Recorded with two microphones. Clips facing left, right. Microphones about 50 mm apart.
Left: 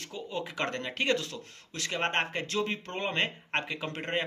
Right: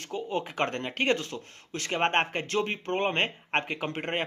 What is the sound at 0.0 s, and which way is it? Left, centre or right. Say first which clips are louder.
A man's voice: right 5 dB; right.